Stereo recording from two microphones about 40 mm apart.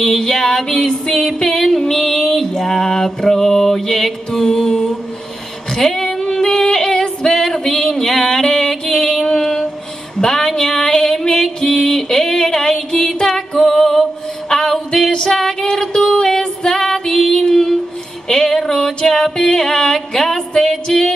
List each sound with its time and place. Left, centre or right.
0.0 s mantra: centre
5.7 s a sound: centre
6.1 s female singing: centre
8.9 s music: centre
15.3 s female singing: centre
18.3 s a sound: centre
20.5 s music: centre